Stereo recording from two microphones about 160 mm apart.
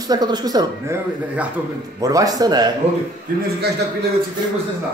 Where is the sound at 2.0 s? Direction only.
20° right (ahead or behind).